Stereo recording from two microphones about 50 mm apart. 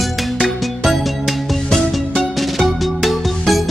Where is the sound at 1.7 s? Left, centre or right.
Centre.